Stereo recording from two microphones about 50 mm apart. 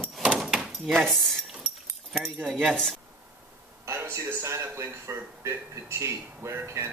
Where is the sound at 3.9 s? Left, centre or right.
Right.